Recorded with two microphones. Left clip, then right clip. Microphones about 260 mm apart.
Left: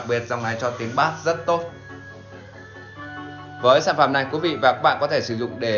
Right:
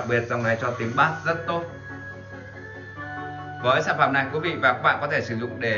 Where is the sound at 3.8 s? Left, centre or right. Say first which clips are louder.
Left 2 dB; centre.